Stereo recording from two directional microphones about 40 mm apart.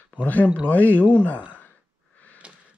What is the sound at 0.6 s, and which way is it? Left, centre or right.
Speech, left.